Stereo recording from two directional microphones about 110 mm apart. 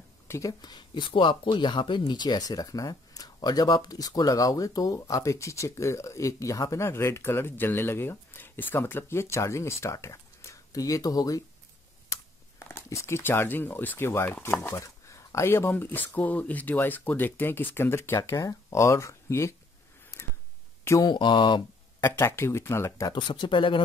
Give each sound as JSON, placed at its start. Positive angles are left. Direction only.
{"t": 0.3, "sound": "speech", "side_deg": 30}
{"t": 12.5, "sound": "speech", "side_deg": 25}
{"t": 21.0, "sound": "speech", "side_deg": 45}
{"t": 22.0, "sound": "speech", "side_deg": 25}
{"t": 23.1, "sound": "speech", "side_deg": 45}